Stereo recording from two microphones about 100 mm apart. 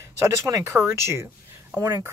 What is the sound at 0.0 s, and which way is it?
Speech, 35° right (ahead or behind).